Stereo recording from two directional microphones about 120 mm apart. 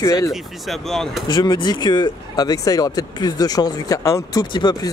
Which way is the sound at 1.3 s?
35° left (ahead or behind).